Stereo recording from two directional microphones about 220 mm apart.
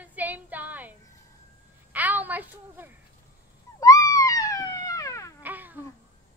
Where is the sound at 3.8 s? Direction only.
15° left (ahead or behind).